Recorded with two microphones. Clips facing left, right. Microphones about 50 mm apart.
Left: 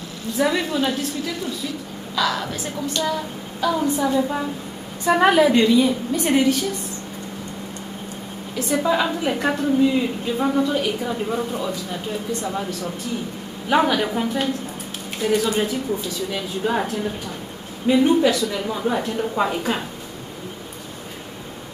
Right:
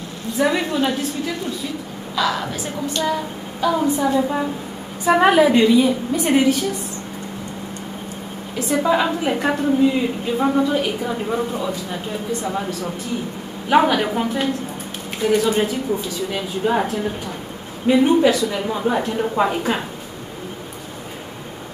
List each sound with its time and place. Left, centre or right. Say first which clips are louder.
0.4 s a woman's voice: right 2 dB; centre
2.1 s a woman's voice: right 1 dB; centre
8.5 s a woman's voice: right 2 dB; centre
17.8 s a woman's voice: right 2 dB; centre